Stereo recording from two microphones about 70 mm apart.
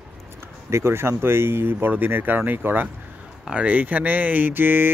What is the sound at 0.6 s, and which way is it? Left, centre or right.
A man's voice, right.